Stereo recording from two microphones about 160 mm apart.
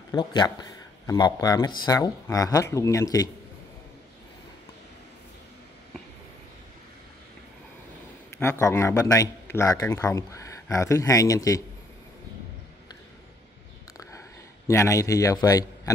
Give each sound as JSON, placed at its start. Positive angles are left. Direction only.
{"t": 0.1, "sound": "speech", "side_deg": 30}
{"t": 8.4, "sound": "speech", "side_deg": 15}
{"t": 14.7, "sound": "speech", "side_deg": 20}